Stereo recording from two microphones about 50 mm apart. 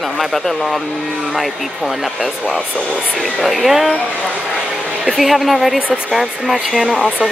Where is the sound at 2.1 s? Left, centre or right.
Centre.